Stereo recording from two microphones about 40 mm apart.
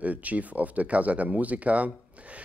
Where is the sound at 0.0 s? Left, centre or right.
Right.